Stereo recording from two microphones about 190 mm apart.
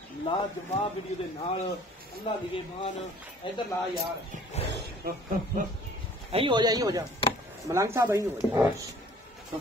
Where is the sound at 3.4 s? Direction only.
25° left (ahead or behind).